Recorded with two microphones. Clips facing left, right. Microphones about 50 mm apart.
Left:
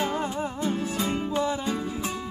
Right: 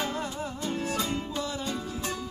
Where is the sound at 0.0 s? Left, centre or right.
Left.